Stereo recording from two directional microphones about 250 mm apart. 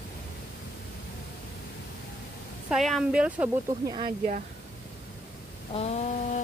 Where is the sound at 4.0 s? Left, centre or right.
Right.